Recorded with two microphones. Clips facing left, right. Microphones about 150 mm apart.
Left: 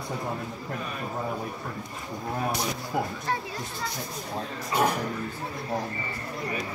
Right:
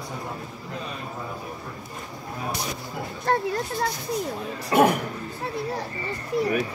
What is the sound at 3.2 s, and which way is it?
Speech, 55° right (ahead or behind).